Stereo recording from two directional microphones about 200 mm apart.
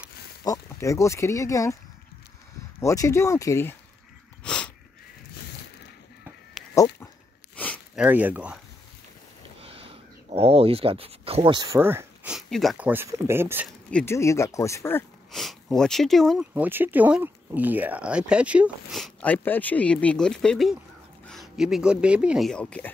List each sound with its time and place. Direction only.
0.4 s speech: 15° left (ahead or behind)
2.8 s speech: 15° left (ahead or behind)
4.4 s a sound: 5° left (ahead or behind)
6.6 s goat: centre (ahead or behind)
7.5 s a sound: 5° left (ahead or behind)
7.9 s speech: 5° right (ahead or behind)
9.6 s speech: 30° right (ahead or behind); by 13.7 s 10° right (ahead or behind)
13.8 s speech: 10° left (ahead or behind)